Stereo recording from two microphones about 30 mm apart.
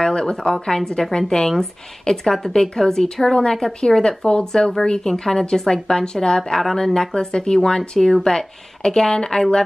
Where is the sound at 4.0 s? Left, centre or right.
Left.